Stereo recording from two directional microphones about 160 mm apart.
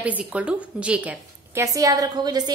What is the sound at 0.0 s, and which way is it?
A woman's voice, 10° right (ahead or behind).